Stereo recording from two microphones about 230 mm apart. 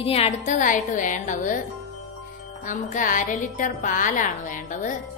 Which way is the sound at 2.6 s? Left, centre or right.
Left.